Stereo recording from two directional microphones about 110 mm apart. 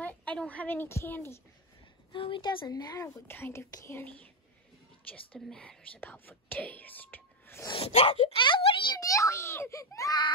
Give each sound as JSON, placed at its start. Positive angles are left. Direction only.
{"t": 0.0, "sound": "a woman's voice", "side_deg": 10}
{"t": 2.1, "sound": "speech", "side_deg": 50}
{"t": 3.3, "sound": "a child's voice", "side_deg": 20}
{"t": 5.3, "sound": "speech", "side_deg": 10}
{"t": 7.7, "sound": "speech", "side_deg": 60}
{"t": 9.0, "sound": "a child's voice", "side_deg": 30}